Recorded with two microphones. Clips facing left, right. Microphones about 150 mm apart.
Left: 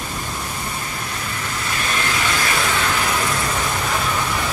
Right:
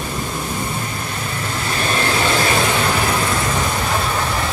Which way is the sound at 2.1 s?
30° right (ahead or behind).